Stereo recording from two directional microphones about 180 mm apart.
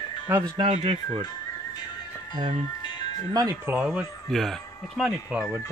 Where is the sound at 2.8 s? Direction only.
25° left (ahead or behind).